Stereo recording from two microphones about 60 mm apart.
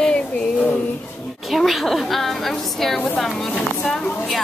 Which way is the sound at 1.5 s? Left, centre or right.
Centre.